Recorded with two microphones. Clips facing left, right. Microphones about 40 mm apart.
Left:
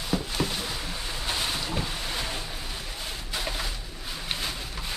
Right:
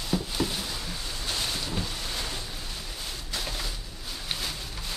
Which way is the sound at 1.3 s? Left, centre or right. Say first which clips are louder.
Left 2 dB; left.